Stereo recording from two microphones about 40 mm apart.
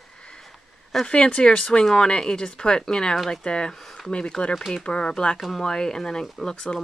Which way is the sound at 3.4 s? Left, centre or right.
Left.